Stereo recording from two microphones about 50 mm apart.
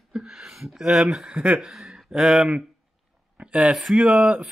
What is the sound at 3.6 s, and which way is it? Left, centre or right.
Speech, centre.